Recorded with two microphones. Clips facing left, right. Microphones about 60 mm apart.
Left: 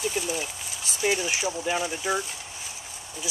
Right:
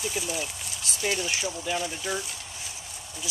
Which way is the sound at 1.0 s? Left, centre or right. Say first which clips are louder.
Left 3 dB; centre.